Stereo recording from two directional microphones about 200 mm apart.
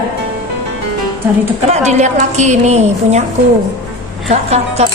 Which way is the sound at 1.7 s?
35° right (ahead or behind).